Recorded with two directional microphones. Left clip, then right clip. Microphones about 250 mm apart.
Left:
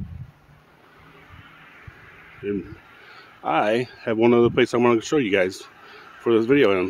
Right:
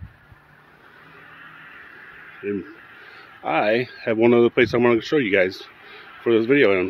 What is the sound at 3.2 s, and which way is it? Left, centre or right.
Speech, centre.